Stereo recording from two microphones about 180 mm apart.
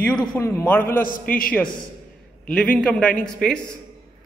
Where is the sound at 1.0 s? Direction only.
50° left (ahead or behind).